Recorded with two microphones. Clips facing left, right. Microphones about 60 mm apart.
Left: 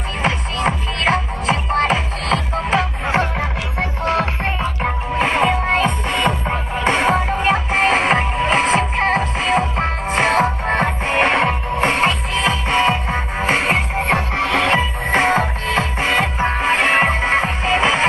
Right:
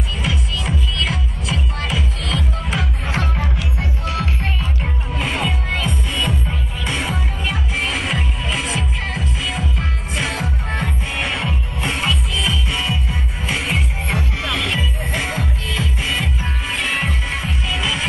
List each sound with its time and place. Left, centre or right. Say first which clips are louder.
0.2 s music: left 8 dB; left